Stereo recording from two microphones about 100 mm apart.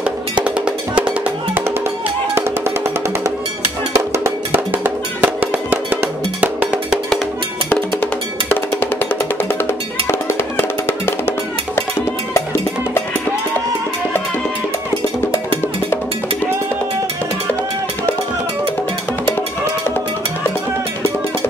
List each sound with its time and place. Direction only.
0.0 s music: 15° right (ahead or behind)
3.9 s music: 30° right (ahead or behind)
8.5 s music: 15° left (ahead or behind)